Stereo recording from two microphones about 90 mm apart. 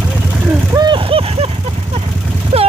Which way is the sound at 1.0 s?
90° right.